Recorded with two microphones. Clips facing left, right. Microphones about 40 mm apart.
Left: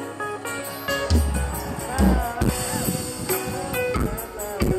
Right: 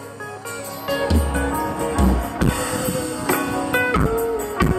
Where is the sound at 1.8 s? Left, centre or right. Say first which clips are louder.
Left 2 dB; right.